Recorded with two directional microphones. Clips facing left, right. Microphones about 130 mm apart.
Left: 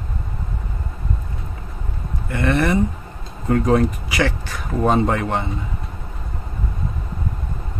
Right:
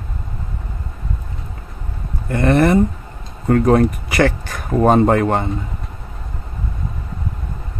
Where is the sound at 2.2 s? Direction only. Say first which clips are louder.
Right 5 dB; 40° right (ahead or behind).